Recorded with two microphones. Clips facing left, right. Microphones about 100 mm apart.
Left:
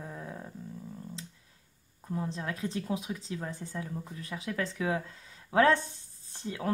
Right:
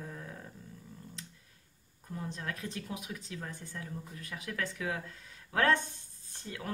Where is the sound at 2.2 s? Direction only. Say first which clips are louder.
Left 5 dB; 25° left (ahead or behind).